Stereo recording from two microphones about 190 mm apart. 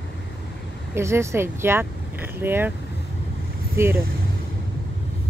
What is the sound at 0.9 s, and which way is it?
Speech, 15° right (ahead or behind).